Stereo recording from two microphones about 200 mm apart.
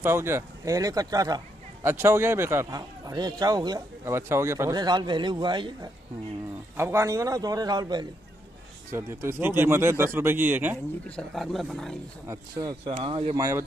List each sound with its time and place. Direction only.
0.0 s a man's voice: 10° right (ahead or behind)
11.1 s speech: 5° left (ahead or behind)
12.3 s a man's voice: 15° right (ahead or behind)
13.0 s a man's voice: 25° right (ahead or behind)
13.4 s a man's voice: 15° right (ahead or behind)